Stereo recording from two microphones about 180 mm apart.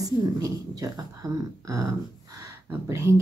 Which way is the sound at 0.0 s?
20° right (ahead or behind).